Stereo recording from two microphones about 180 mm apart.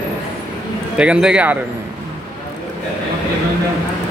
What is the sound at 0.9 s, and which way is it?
Speech, 5° right (ahead or behind).